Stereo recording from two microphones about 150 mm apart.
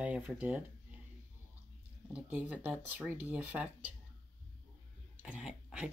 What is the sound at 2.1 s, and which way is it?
Speech, 10° right (ahead or behind).